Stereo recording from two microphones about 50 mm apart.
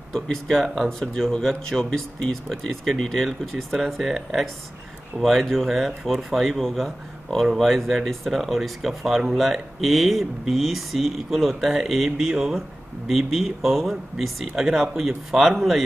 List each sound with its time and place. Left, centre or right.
0.1 s speech: centre